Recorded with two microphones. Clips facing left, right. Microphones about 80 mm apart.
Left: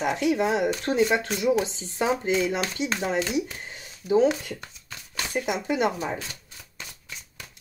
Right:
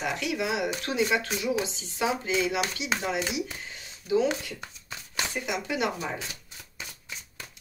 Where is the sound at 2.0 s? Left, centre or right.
Left.